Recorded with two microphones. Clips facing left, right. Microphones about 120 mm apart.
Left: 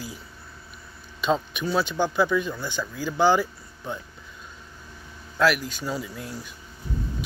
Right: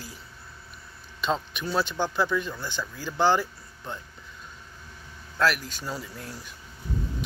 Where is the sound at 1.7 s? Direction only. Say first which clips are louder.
Left 3 dB; 5° left (ahead or behind).